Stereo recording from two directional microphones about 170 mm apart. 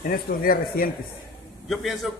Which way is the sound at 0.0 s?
55° left (ahead or behind).